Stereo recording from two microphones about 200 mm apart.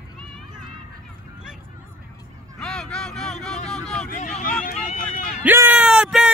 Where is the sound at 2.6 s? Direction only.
5° left (ahead or behind).